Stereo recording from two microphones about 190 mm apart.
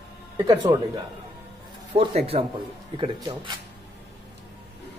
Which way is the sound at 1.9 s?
30° right (ahead or behind).